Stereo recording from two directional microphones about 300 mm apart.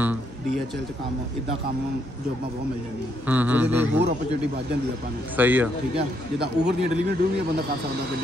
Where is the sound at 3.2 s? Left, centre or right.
Centre.